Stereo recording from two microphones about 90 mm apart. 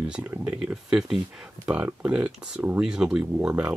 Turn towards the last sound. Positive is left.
turn(degrees=-15)  # may be behind; listen again after turning